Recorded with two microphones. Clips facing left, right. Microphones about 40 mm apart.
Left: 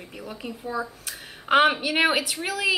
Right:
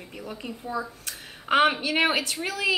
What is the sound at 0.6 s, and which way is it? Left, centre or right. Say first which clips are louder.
Speech: left 2 dB; left.